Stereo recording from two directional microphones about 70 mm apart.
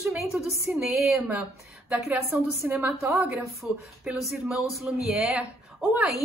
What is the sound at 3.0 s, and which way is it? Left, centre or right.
Speech, right.